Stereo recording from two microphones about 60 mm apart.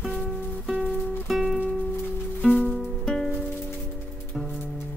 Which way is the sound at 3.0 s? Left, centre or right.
Centre.